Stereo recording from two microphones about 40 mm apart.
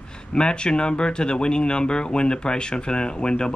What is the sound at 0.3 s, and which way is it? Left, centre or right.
Speech, left.